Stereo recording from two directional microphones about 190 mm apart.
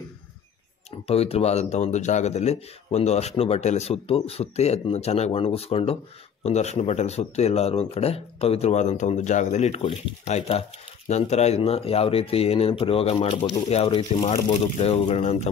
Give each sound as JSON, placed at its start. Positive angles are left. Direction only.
{"t": 1.0, "sound": "speech", "side_deg": 30}